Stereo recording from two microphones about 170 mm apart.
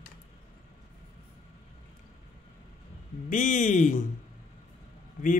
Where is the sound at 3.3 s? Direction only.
50° left (ahead or behind).